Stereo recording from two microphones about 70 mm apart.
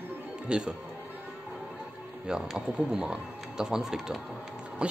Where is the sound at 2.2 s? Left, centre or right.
Centre.